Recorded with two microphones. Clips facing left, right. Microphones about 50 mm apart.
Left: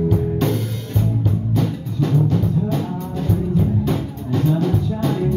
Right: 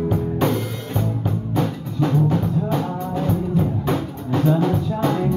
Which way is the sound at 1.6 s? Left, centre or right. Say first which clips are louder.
Right 3 dB; centre.